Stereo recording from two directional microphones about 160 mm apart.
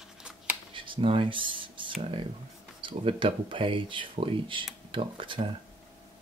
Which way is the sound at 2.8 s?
35° right (ahead or behind).